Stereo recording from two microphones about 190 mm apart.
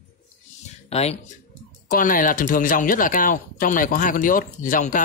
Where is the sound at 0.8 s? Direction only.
35° left (ahead or behind).